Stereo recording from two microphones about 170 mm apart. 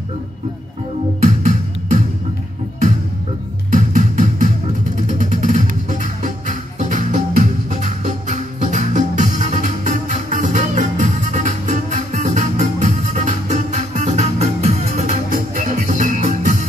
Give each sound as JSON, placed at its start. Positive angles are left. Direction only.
{"t": 1.2, "sound": "music", "side_deg": -45}
{"t": 3.7, "sound": "music", "side_deg": -45}